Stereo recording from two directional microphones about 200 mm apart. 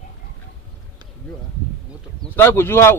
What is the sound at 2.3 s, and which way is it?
Speech, 10° left (ahead or behind).